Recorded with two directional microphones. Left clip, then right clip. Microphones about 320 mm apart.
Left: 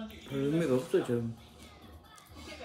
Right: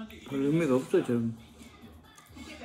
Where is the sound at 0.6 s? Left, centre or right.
Right.